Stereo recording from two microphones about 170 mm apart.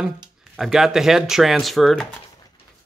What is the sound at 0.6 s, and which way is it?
Speech, centre (ahead or behind).